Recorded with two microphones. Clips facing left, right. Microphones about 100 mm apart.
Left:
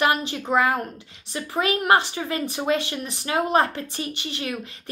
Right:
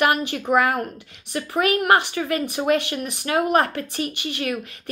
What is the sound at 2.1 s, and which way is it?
Speech, 30° left (ahead or behind).